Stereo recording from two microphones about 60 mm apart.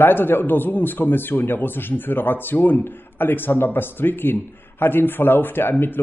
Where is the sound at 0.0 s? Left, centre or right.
Left.